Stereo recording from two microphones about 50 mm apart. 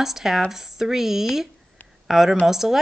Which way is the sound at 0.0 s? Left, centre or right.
Centre.